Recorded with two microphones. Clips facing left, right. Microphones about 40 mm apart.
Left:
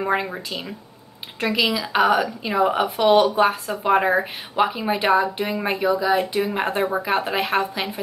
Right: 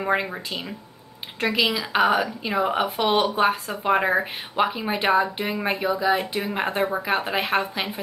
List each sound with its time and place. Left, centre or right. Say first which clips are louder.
0.0 s a woman's voice: left 1 dB; centre